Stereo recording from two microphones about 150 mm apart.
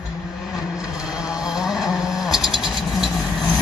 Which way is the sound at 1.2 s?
5° right (ahead or behind).